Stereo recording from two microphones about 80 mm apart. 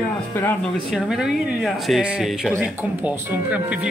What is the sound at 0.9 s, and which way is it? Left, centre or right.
Speech, centre.